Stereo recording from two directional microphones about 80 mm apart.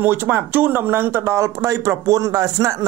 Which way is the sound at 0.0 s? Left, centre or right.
Right.